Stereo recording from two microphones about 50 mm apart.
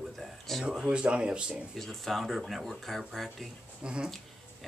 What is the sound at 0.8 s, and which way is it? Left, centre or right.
Speech, right.